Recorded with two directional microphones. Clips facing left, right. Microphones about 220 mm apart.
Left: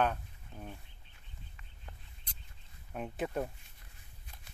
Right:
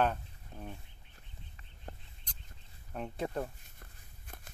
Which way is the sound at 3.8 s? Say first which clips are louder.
Right 4 dB; 50° right (ahead or behind).